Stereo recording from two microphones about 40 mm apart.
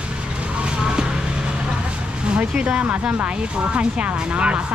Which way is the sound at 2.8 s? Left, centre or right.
Right.